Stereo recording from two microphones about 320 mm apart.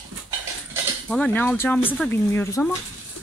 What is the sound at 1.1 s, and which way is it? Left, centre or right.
Speech, centre.